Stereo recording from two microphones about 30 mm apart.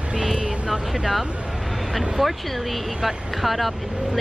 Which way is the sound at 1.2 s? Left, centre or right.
Right.